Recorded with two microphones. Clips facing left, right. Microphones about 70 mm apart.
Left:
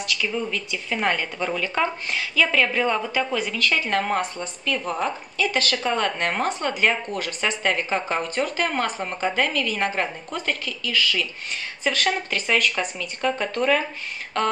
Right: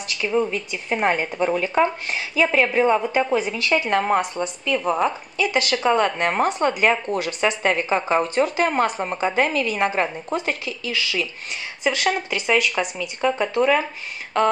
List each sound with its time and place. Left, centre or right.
0.1 s a woman's voice: right; by 13.8 s centre